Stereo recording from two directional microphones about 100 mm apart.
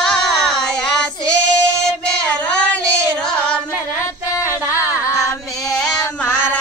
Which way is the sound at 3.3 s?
10° left (ahead or behind).